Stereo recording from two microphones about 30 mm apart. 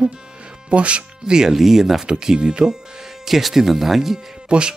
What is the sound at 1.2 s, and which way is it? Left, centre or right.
Speech, right.